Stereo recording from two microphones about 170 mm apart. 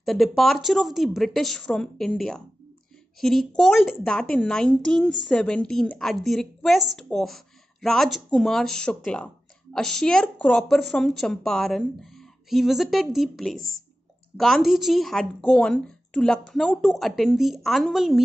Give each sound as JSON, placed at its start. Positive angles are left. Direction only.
{"t": 0.0, "sound": "a woman's voice", "side_deg": 0}
{"t": 13.6, "sound": "speech", "side_deg": -60}
{"t": 14.3, "sound": "a woman's voice", "side_deg": 0}